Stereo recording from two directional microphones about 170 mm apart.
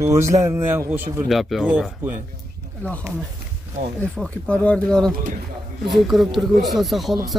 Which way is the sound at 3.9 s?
5° left (ahead or behind).